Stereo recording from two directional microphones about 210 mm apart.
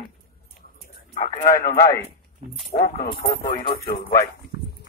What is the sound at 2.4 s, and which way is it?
Speech, 30° right (ahead or behind).